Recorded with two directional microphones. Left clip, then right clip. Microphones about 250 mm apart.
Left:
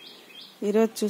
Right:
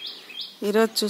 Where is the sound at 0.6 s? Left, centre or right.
Centre.